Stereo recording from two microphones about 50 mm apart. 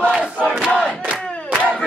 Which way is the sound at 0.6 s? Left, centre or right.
Centre.